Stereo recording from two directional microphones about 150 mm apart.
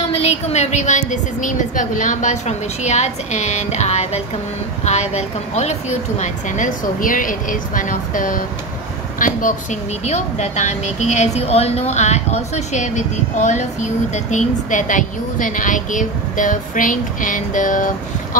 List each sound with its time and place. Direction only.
0.1 s a woman's voice: 40° left (ahead or behind); by 17.9 s 60° left (ahead or behind)